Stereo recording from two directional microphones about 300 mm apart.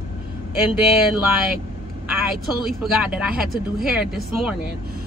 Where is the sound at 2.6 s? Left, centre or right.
Centre.